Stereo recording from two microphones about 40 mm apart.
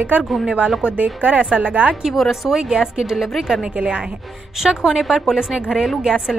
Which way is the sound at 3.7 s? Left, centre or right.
Right.